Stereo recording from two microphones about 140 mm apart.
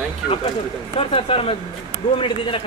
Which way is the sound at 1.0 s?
40° left (ahead or behind).